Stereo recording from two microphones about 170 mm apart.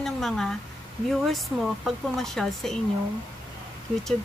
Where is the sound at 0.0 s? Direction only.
5° left (ahead or behind).